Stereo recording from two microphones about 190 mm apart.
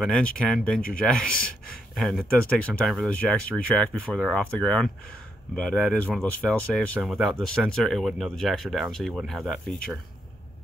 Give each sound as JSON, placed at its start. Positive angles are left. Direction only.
{"t": 0.0, "sound": "speech", "side_deg": 5}